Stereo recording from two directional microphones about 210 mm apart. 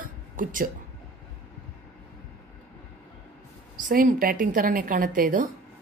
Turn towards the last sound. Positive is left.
turn(degrees=-40)  # may be behind; listen again after turning